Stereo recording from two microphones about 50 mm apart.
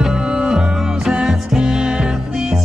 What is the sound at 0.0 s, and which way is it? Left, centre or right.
Music, centre.